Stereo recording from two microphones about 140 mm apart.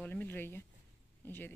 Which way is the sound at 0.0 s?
10° left (ahead or behind).